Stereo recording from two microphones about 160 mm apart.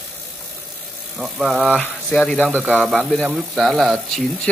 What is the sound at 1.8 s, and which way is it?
Speech, 5° left (ahead or behind).